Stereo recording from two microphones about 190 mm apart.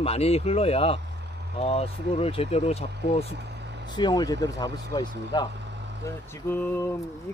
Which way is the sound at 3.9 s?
20° left (ahead or behind).